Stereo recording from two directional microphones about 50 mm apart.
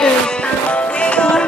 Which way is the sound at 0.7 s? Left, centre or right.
Left.